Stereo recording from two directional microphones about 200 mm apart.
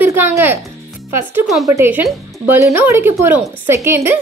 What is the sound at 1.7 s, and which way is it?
Speech, 10° right (ahead or behind).